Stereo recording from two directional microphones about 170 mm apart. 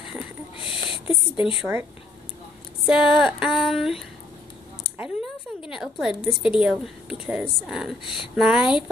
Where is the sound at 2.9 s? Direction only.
5° right (ahead or behind).